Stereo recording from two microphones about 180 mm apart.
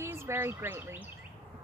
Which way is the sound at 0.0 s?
15° right (ahead or behind).